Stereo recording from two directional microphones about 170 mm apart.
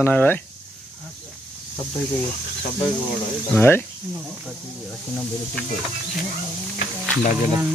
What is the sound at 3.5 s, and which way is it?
Speech, 15° left (ahead or behind).